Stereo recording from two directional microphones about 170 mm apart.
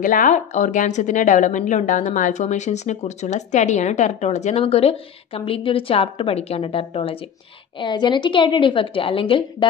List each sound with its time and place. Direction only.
0.0 s a woman's voice: 50° left (ahead or behind); by 9.7 s 30° left (ahead or behind)